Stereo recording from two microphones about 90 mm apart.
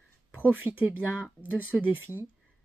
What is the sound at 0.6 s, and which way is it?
Speech, 20° right (ahead or behind).